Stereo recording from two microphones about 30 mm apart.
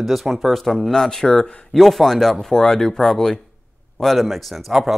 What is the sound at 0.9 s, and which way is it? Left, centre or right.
Speech, centre.